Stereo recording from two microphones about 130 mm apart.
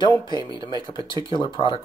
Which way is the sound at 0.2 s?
35° left (ahead or behind).